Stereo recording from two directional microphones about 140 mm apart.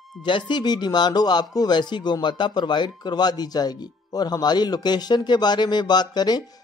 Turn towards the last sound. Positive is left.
turn(degrees=30)  # may be behind; listen again after turning